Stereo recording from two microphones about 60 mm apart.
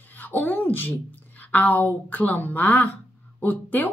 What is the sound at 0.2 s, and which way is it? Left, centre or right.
A woman's voice, left.